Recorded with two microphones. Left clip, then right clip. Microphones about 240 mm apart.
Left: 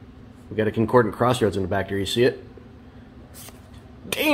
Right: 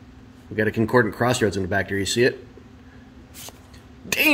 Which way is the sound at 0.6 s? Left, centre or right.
Centre.